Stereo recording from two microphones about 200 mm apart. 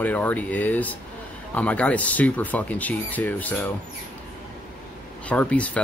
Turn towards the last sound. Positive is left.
turn(degrees=5)  # may be behind; listen again after turning